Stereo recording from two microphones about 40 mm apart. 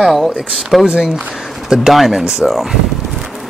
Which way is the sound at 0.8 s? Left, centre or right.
Right.